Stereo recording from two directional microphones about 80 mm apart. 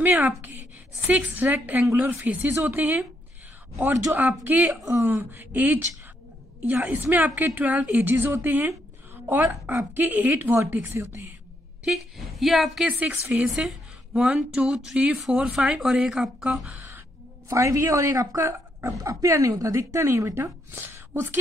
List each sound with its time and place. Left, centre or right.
0.0 s a woman's voice: right
4.9 s a woman's voice: right
11.8 s a woman's voice: centre
12.8 s speech: centre
17.5 s a woman's voice: right
20.7 s a woman's voice: right